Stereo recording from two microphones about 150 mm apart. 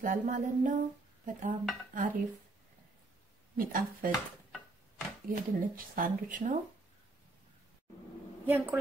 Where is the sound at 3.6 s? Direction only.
65° right (ahead or behind).